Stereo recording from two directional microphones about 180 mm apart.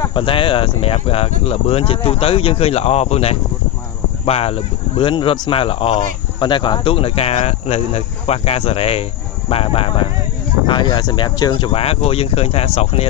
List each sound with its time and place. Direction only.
0.0 s speech: 25° left (ahead or behind)